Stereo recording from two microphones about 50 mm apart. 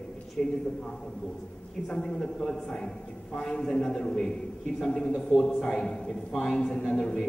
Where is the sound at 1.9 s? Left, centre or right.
Centre.